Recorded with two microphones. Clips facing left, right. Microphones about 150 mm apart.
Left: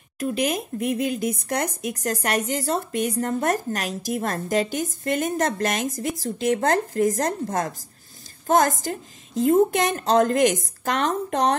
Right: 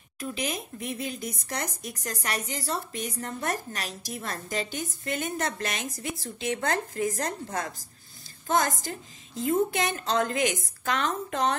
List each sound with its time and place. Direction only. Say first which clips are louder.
0.2 s a woman's voice: left 8 dB; 45° left (ahead or behind)